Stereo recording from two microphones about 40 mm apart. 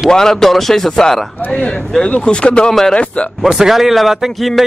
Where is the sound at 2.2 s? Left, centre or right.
Left.